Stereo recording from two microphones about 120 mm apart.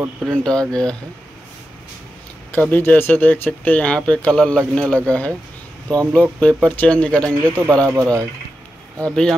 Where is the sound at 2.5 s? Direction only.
15° left (ahead or behind).